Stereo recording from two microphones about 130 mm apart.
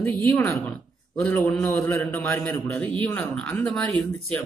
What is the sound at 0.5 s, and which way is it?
A man's voice, 5° left (ahead or behind).